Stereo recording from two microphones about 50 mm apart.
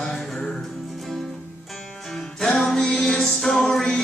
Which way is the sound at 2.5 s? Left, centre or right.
Centre.